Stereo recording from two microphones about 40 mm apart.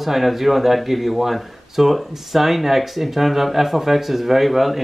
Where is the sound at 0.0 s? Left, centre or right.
Centre.